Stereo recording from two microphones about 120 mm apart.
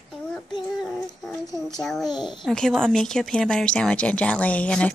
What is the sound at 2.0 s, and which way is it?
Speech, 40° left (ahead or behind).